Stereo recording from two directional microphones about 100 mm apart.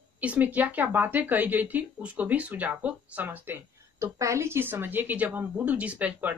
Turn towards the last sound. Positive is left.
turn(degrees=-15)  # may be behind; listen again after turning